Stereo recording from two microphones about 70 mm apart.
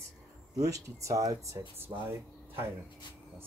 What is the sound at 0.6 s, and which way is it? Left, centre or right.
Speech, right.